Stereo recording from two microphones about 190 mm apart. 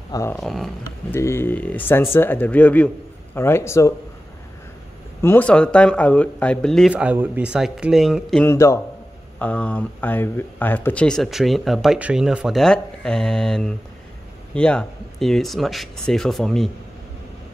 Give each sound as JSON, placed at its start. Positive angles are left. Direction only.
{"t": 0.1, "sound": "speech", "side_deg": 15}
{"t": 0.4, "sound": "speech", "side_deg": 0}
{"t": 1.1, "sound": "speech", "side_deg": 10}
{"t": 5.2, "sound": "speech", "side_deg": 10}
{"t": 8.5, "sound": "speech", "side_deg": 15}